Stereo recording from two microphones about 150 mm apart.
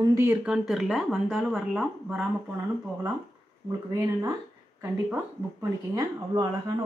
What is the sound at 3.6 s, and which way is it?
Speech, 20° right (ahead or behind).